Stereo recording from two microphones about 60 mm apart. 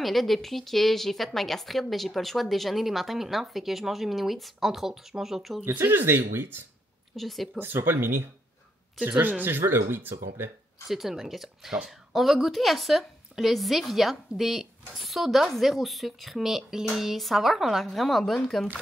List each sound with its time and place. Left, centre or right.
0.0 s speech: centre
5.9 s speech: right
7.2 s speech: centre
7.5 s speech: right
9.2 s speech: right
10.9 s speech: centre